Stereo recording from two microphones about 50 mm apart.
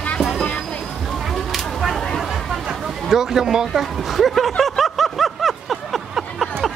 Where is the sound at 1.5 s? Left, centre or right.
Centre.